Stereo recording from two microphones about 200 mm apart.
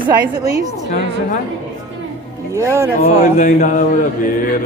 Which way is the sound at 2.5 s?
15° right (ahead or behind).